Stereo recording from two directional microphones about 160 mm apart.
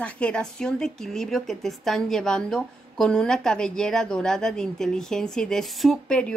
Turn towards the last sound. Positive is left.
turn(degrees=5)  # may be behind; listen again after turning